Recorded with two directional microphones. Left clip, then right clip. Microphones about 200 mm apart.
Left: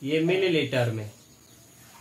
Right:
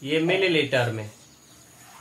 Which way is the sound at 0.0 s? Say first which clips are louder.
Right 2 dB; 10° left (ahead or behind).